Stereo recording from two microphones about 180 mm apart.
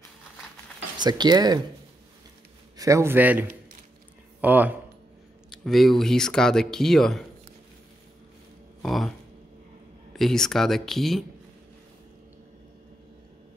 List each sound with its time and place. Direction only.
0.9 s speech: 25° right (ahead or behind)
2.8 s a man's voice: 15° right (ahead or behind)
5.6 s speech: centre (ahead or behind)
8.8 s speech: centre (ahead or behind)
10.1 s speech: centre (ahead or behind)